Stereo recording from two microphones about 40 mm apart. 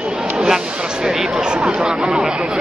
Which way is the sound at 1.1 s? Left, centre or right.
Centre.